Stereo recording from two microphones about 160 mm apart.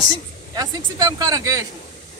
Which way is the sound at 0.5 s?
20° right (ahead or behind).